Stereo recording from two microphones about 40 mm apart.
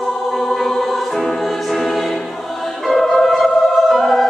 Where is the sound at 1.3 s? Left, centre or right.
Centre.